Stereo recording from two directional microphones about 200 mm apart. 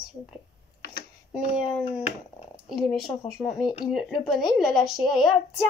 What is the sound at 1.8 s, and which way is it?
Speech, 30° left (ahead or behind).